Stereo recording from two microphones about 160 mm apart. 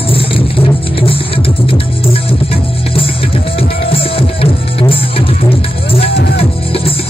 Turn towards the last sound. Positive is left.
turn(degrees=90)